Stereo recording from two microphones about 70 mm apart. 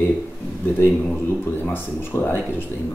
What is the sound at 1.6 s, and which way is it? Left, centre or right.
Speech, left.